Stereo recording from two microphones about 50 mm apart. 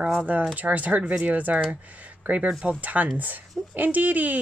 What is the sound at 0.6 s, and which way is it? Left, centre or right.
Speech, right.